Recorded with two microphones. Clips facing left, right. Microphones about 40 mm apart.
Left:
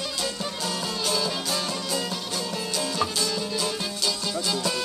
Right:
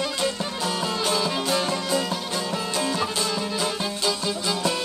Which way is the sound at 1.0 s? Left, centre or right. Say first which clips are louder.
Right 2 dB; right.